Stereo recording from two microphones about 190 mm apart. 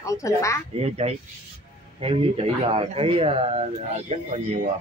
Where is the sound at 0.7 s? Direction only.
30° right (ahead or behind).